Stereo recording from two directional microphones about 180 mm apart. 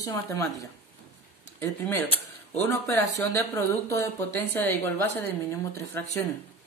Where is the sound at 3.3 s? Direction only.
15° left (ahead or behind).